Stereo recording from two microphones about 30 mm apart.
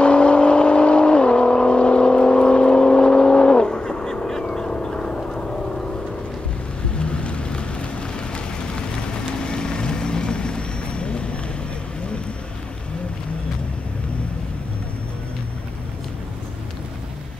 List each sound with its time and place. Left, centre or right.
0.0 s vehicle: left
7.0 s vehicle: left
9.4 s vehicle: left